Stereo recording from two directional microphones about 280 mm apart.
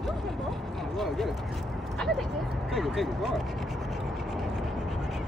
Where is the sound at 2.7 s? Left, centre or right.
Centre.